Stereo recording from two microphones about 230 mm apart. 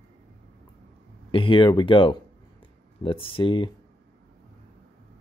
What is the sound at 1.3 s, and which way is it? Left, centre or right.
Speech, left.